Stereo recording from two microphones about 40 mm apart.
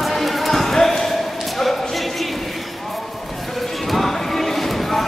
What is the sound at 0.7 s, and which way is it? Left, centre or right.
Basketball bounce, centre.